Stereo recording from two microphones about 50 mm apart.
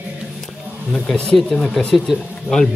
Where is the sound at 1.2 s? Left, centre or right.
Centre.